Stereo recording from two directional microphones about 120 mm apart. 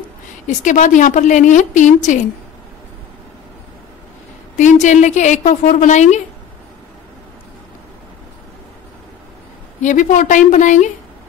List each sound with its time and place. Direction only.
0.6 s a woman's voice: 90° left
4.6 s a woman's voice: 90° left
9.8 s a woman's voice: 90° left